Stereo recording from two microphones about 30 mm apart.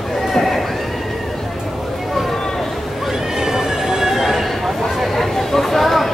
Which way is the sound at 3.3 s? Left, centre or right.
Centre.